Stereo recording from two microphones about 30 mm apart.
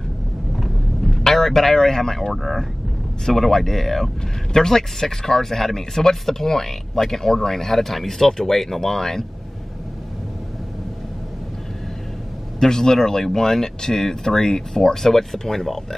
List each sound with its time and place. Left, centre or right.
1.2 s speech: centre
4.5 s speech: centre
12.5 s speech: centre